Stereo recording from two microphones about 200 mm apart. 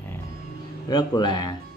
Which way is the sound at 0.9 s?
20° left (ahead or behind).